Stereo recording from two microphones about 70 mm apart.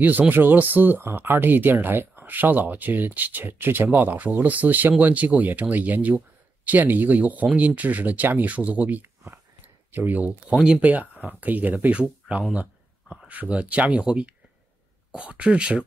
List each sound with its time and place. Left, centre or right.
0.0 s speech: right